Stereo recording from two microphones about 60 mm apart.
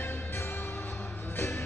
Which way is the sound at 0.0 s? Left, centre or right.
Left.